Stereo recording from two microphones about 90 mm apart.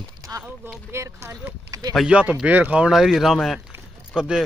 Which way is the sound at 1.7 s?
40° right (ahead or behind).